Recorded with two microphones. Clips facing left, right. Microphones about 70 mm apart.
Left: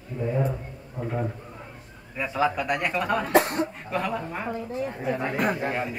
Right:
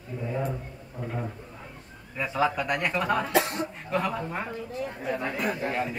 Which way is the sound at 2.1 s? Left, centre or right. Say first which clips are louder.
Left 1 dB; centre.